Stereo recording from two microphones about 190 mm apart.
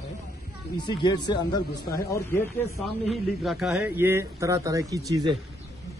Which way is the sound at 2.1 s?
15° left (ahead or behind).